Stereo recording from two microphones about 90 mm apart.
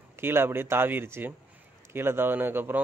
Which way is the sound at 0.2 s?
25° right (ahead or behind).